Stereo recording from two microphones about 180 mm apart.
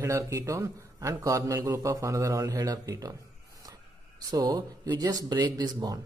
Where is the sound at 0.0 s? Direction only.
15° right (ahead or behind).